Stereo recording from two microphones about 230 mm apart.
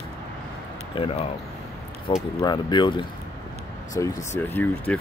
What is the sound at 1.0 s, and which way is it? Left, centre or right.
Speech, left.